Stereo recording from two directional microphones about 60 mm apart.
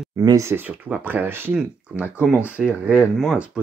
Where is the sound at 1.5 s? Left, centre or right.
Centre.